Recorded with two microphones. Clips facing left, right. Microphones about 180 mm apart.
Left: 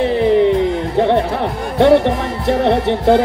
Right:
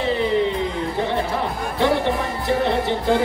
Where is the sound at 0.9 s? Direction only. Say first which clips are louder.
Left 9 dB; 65° left (ahead or behind).